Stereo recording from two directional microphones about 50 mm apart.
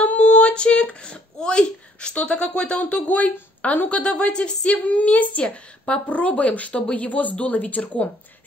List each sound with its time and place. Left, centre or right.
0.0 s a sound: left
2.9 s speech: left
4.0 s speech: centre
4.8 s speech: left